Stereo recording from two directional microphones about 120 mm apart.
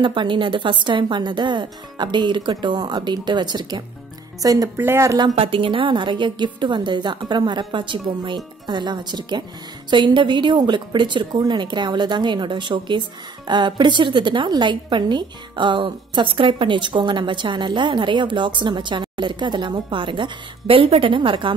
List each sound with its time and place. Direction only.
0.0 s a woman's voice: 40° right (ahead or behind); by 5.2 s 25° right (ahead or behind)
5.2 s a woman's voice: 50° right (ahead or behind)